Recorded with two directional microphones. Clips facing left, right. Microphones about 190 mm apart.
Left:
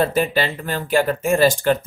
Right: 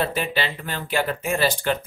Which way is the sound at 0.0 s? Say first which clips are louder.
Left 6 dB; 45° left (ahead or behind).